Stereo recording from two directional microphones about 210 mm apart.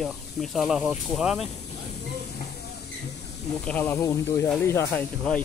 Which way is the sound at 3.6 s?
10° left (ahead or behind).